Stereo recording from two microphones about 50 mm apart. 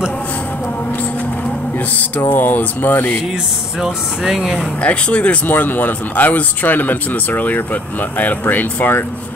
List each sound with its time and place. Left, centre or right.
2.0 s speech: left
3.8 s speech: centre
4.8 s speech: left
5.5 s speech: left